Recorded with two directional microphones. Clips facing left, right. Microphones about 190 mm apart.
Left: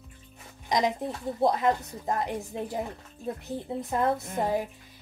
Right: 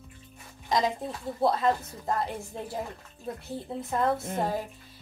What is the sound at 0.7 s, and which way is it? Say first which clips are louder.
A woman's voice: left 1 dB; 15° left (ahead or behind).